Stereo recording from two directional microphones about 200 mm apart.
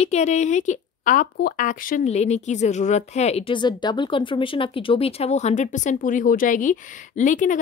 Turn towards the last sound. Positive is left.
turn(degrees=40)  # may be behind; listen again after turning